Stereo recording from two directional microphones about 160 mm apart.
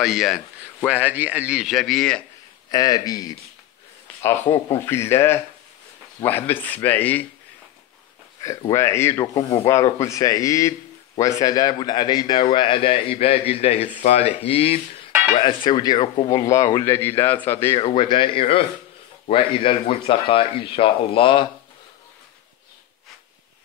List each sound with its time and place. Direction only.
0.0 s speech: centre (ahead or behind)
2.7 s speech: 25° left (ahead or behind)
8.4 s a man's voice: 20° left (ahead or behind)
17.7 s a man's voice: 30° left (ahead or behind)